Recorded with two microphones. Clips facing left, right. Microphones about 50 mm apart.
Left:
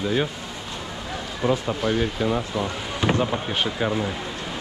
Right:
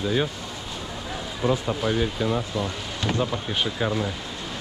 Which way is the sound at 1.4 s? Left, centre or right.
Left.